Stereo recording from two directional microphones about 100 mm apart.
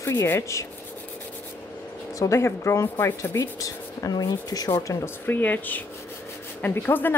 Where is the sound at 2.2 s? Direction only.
30° left (ahead or behind).